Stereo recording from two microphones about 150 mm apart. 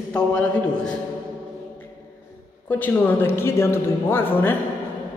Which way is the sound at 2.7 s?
10° left (ahead or behind).